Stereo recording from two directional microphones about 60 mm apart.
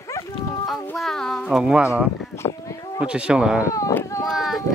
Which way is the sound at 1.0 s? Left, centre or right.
Centre.